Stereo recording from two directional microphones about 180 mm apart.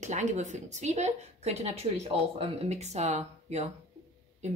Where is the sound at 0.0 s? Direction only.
40° right (ahead or behind).